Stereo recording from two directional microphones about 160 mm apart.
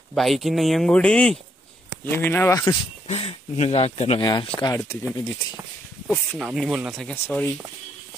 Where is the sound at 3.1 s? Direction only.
40° left (ahead or behind).